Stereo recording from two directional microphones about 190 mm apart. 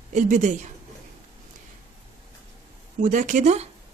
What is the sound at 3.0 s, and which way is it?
Speech, 40° right (ahead or behind).